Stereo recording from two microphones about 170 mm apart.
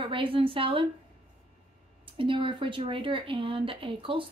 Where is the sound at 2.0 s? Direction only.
30° right (ahead or behind).